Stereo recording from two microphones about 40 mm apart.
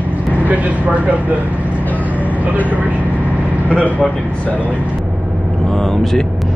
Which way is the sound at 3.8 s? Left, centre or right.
Left.